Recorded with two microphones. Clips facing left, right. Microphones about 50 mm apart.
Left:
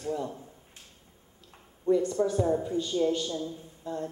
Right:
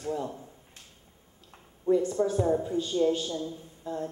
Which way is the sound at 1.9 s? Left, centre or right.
Centre.